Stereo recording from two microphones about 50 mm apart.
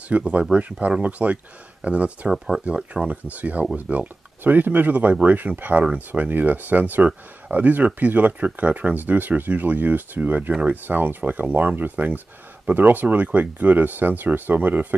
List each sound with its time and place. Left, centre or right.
0.1 s speech: right
2.3 s speech: centre
2.6 s speech: right